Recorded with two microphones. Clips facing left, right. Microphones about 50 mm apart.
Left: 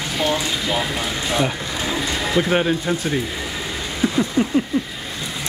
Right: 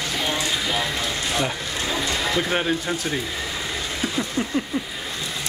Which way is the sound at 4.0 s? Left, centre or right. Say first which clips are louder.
Left 8 dB; centre.